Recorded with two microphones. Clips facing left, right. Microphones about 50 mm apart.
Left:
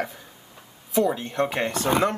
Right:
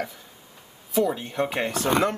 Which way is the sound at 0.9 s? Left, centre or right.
Centre.